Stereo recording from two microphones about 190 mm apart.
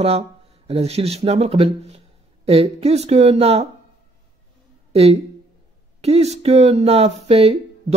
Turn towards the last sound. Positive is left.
turn(degrees=-30)  # may be behind; listen again after turning